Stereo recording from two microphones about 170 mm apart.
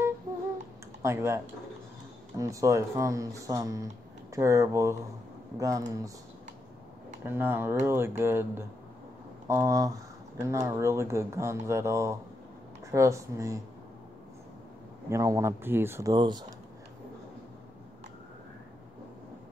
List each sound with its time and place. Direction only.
1.0 s speech: 15° right (ahead or behind)
7.2 s speech: 15° right (ahead or behind)
15.0 s speech: 15° right (ahead or behind)